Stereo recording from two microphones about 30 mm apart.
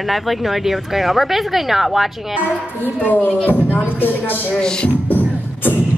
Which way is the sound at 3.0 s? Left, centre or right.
Left.